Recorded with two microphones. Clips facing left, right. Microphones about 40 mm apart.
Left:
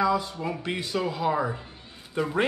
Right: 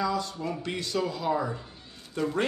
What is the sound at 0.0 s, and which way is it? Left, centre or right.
A man's voice, centre.